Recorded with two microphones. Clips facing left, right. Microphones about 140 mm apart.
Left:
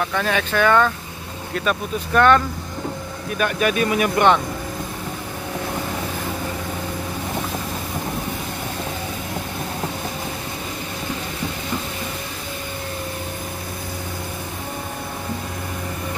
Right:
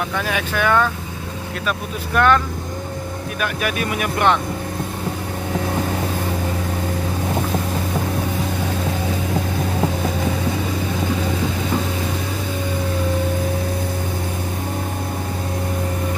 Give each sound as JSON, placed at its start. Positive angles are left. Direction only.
{"t": 0.2, "sound": "speech", "side_deg": -10}